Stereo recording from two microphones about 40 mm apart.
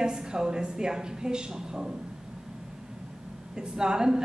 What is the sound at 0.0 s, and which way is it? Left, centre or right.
A woman's voice, centre.